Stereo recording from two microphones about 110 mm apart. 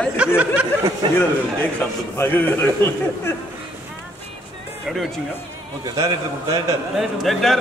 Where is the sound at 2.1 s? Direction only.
20° left (ahead or behind).